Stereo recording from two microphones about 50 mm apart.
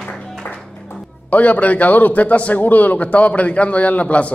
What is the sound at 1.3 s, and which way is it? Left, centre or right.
A man's voice, left.